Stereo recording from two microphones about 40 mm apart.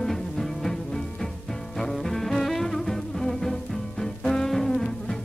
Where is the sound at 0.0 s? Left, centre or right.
Centre.